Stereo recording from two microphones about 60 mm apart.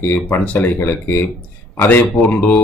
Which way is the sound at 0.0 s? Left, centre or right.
Left.